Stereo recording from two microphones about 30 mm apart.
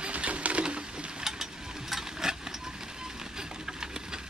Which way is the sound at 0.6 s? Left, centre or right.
Right.